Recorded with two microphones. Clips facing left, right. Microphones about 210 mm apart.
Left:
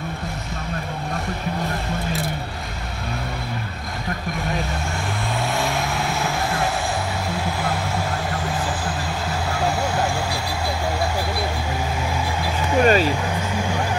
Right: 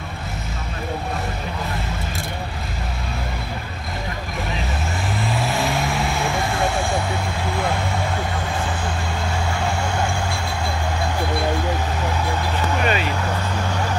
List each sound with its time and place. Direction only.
5.4 s vehicle: centre (ahead or behind)
12.8 s vehicle: 40° left (ahead or behind)